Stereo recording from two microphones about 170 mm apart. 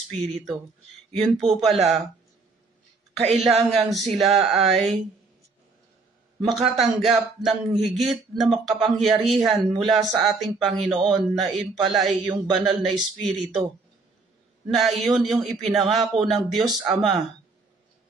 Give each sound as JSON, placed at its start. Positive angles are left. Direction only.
{"t": 0.1, "sound": "speech", "side_deg": 0}
{"t": 3.3, "sound": "a man's voice", "side_deg": -35}
{"t": 3.6, "sound": "speech", "side_deg": 0}
{"t": 6.4, "sound": "speech", "side_deg": 0}
{"t": 14.7, "sound": "speech", "side_deg": 0}